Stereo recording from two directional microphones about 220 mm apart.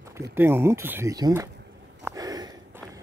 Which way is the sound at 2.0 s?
15° right (ahead or behind).